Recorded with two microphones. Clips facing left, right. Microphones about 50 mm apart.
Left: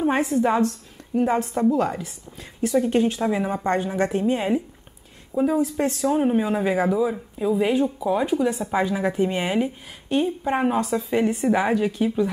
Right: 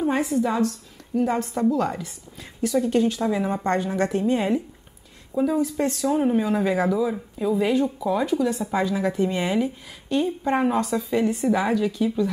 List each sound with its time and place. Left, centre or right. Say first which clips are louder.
0.0 s a woman's voice: left 2 dB; left
1.2 s speech: left 2 dB; centre
2.6 s a woman's voice: left 1 dB; left; by 11.1 s centre
11.1 s a woman's voice: left 2 dB; left